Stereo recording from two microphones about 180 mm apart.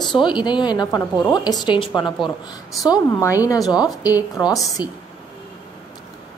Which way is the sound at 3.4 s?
20° left (ahead or behind).